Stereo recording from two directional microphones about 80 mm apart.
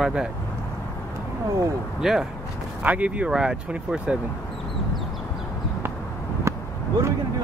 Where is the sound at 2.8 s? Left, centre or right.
Centre.